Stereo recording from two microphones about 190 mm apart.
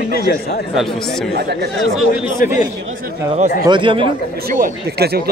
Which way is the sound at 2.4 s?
45° left (ahead or behind).